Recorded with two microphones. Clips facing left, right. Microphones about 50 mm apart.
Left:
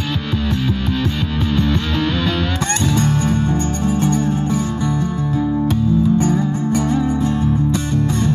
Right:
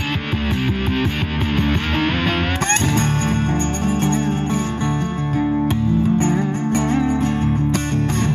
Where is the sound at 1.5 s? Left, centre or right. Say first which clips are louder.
Left 1 dB; right.